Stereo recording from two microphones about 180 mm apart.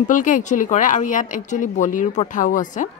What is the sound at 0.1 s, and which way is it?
Speech, 45° left (ahead or behind).